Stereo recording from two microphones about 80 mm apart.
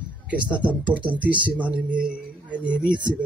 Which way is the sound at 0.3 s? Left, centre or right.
Centre.